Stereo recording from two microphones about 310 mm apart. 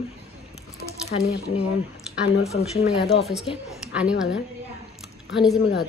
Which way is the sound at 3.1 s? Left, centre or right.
Centre.